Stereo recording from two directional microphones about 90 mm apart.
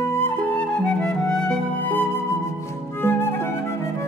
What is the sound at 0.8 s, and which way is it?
Music, 10° left (ahead or behind).